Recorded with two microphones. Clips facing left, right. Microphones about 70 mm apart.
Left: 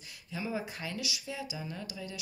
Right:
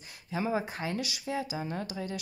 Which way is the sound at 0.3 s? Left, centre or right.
Right.